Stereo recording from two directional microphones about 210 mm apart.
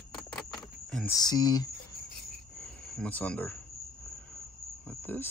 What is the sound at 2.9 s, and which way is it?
Speech, 5° left (ahead or behind).